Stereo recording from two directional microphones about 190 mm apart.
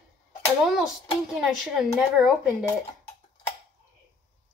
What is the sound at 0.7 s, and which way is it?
A child's voice, 5° right (ahead or behind).